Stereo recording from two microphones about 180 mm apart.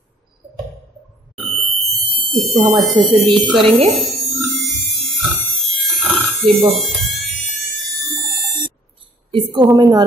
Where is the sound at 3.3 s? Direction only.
30° right (ahead or behind).